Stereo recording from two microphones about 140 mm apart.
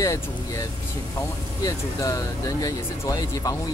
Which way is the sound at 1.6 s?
25° left (ahead or behind).